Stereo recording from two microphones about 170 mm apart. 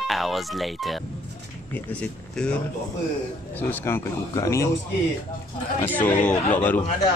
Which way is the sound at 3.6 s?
10° left (ahead or behind).